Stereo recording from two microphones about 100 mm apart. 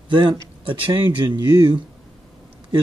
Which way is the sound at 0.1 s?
55° right (ahead or behind).